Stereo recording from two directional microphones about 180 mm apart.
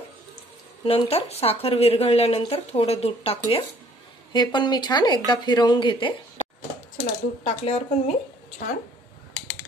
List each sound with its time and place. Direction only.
0.8 s speech: 35° left (ahead or behind)